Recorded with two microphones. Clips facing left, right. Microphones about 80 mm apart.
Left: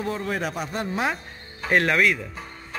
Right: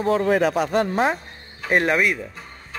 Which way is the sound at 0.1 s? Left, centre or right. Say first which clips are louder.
Right 14 dB; right.